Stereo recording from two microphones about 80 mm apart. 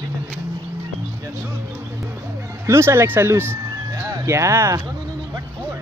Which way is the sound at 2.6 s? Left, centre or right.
Right.